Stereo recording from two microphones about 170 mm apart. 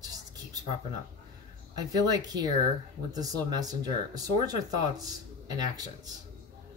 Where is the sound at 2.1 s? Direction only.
20° right (ahead or behind).